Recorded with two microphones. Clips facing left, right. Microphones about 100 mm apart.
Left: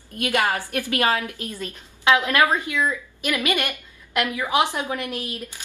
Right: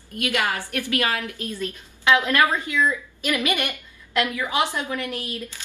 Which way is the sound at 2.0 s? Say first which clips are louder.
Even; 15° left (ahead or behind).